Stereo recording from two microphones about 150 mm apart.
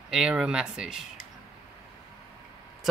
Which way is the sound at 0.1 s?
5° right (ahead or behind).